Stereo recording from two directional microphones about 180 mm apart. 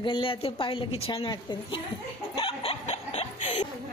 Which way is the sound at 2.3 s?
30° left (ahead or behind).